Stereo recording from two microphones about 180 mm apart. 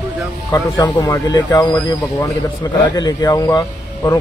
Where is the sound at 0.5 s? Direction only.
20° left (ahead or behind).